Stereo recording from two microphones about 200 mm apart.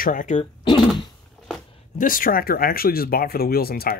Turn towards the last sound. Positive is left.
turn(degrees=50)  # may be behind; listen again after turning